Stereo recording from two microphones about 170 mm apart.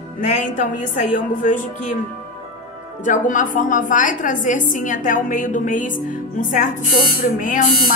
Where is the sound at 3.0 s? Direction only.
50° left (ahead or behind).